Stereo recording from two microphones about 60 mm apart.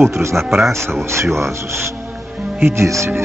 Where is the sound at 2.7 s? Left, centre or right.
Right.